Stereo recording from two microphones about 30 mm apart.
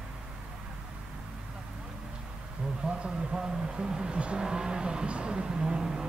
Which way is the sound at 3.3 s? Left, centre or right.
Right.